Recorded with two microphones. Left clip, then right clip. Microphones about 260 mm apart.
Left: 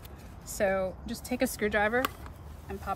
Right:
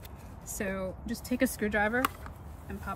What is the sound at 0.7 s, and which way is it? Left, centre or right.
Speech, left.